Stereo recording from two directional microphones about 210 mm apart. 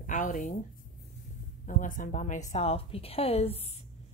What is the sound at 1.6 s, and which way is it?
A woman's voice, 40° left (ahead or behind).